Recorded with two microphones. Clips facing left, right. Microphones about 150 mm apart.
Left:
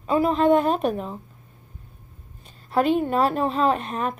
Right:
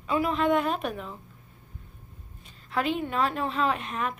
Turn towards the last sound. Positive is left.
turn(degrees=40)  # may be behind; listen again after turning